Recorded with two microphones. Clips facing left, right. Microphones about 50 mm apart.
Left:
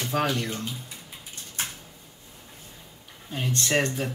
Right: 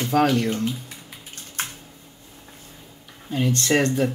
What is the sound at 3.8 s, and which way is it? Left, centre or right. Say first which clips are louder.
Speech: right 5 dB; right.